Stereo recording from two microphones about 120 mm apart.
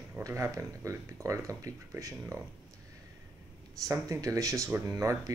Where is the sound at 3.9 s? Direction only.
25° right (ahead or behind).